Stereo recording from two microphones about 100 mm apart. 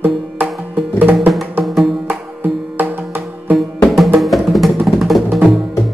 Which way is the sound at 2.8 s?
20° right (ahead or behind).